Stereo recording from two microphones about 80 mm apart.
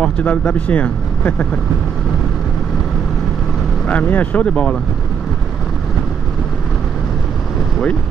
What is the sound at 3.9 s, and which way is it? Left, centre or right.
Speech, centre.